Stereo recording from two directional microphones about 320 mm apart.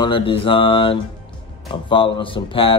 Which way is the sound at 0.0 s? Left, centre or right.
Centre.